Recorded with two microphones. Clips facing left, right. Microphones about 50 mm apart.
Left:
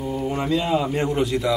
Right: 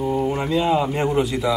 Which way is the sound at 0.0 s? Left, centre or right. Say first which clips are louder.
Right 5 dB; centre.